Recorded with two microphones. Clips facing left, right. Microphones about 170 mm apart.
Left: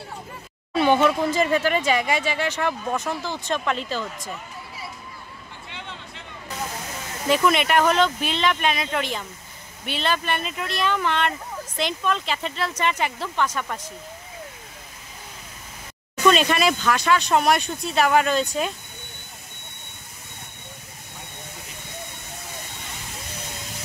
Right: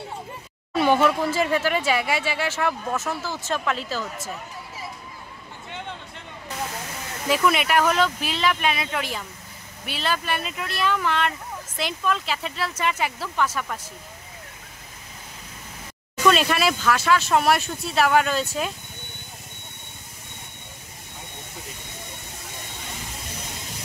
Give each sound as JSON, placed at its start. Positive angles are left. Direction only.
{"t": 0.7, "sound": "speech", "side_deg": -10}
{"t": 5.7, "sound": "a sound", "side_deg": -50}
{"t": 7.2, "sound": "speech", "side_deg": -5}
{"t": 16.3, "sound": "speech", "side_deg": -5}